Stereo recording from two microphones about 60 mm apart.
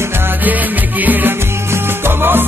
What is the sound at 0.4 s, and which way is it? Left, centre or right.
Music, right.